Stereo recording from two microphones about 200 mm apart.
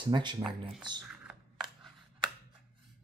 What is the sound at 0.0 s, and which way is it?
Speech, 25° right (ahead or behind).